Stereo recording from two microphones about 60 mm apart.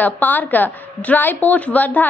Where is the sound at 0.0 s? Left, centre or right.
Left.